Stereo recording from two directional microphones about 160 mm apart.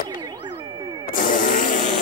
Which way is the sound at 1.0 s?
60° left (ahead or behind).